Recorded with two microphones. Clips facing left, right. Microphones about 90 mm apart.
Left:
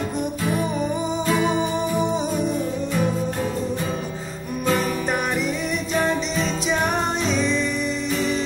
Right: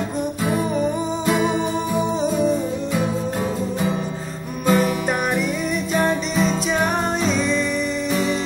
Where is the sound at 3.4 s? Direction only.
15° right (ahead or behind).